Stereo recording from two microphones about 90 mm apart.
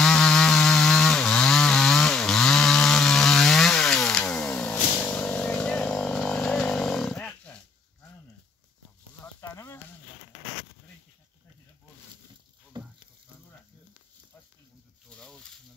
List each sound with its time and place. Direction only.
0.0 s chainsaw: 10° left (ahead or behind)
9.2 s sizzle: 30° left (ahead or behind)
12.7 s frying: 55° right (ahead or behind)
15.0 s a sound: 5° left (ahead or behind)